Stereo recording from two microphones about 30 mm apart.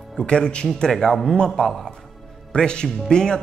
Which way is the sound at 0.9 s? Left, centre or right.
Centre.